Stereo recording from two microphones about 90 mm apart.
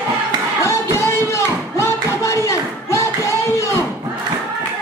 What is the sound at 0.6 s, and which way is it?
Music, 30° left (ahead or behind).